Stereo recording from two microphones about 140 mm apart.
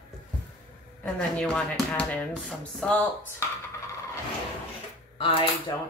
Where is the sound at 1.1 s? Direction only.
5° left (ahead or behind).